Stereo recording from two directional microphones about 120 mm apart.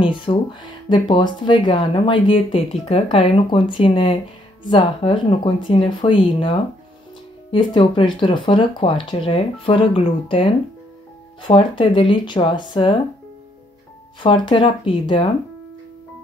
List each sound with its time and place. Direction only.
0.0 s speech: 45° left (ahead or behind)
7.5 s speech: 45° left (ahead or behind)
14.2 s speech: 45° left (ahead or behind)